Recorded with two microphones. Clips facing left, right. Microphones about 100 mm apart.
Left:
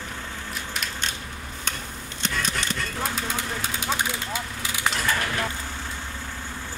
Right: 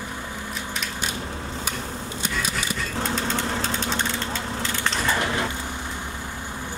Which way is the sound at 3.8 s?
10° left (ahead or behind).